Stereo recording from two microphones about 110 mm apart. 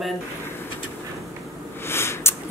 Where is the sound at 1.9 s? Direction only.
20° left (ahead or behind).